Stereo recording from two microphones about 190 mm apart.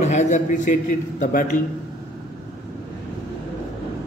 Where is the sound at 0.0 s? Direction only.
35° left (ahead or behind).